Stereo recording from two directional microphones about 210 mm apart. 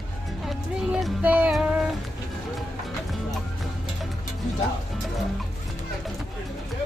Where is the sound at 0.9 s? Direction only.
5° right (ahead or behind).